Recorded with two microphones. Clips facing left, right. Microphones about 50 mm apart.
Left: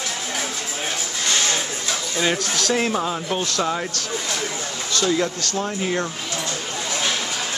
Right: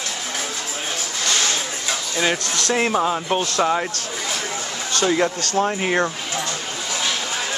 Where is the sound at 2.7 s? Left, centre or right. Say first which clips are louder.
Right 4 dB; centre.